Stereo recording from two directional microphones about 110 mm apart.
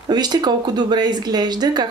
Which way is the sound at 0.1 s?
40° right (ahead or behind).